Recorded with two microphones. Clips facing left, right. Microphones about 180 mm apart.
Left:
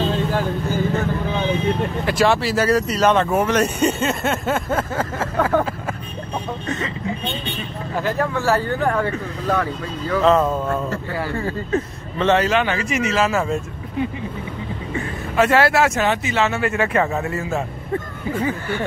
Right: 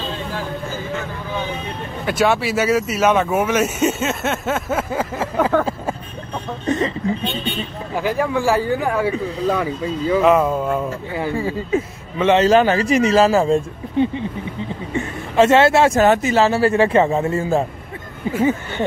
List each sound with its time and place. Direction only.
2.0 s speech: 5° right (ahead or behind)
7.9 s speech: 10° right (ahead or behind)
12.4 s speech: 35° right (ahead or behind)
15.0 s a sound: 25° right (ahead or behind)
16.0 s speech: 40° right (ahead or behind); by 18.9 s 25° right (ahead or behind)